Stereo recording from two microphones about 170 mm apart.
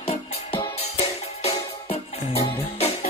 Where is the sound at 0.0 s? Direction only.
35° left (ahead or behind).